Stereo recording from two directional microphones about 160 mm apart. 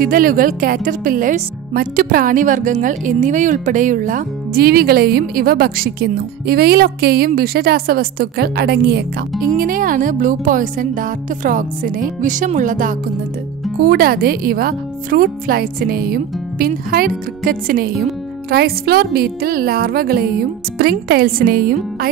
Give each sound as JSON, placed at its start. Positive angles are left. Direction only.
{"t": 0.0, "sound": "speech", "side_deg": -65}
{"t": 9.6, "sound": "speech", "side_deg": -60}
{"t": 13.8, "sound": "speech", "side_deg": -70}
{"t": 18.5, "sound": "speech", "side_deg": -75}